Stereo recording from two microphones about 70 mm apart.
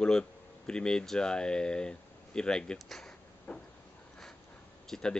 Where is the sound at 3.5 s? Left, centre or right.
Centre.